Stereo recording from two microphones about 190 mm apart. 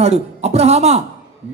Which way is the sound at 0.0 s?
35° right (ahead or behind).